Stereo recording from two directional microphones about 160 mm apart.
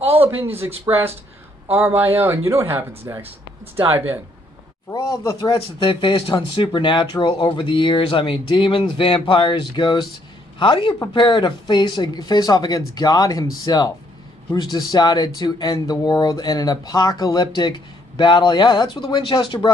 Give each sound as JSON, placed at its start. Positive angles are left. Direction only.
{"t": 0.1, "sound": "a sound", "side_deg": -35}
{"t": 0.5, "sound": "speech", "side_deg": -15}
{"t": 4.9, "sound": "speech", "side_deg": 20}